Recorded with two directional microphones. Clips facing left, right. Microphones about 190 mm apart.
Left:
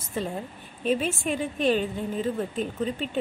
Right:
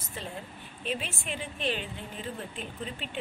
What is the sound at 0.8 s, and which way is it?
A woman's voice, 45° left (ahead or behind).